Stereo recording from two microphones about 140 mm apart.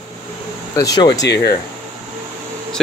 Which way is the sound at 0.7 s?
25° left (ahead or behind).